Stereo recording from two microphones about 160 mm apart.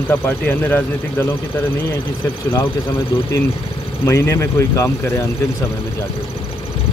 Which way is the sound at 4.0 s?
15° left (ahead or behind).